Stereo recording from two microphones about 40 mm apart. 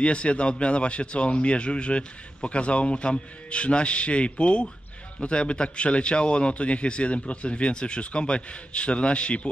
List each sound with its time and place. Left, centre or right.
0.0 s speech: left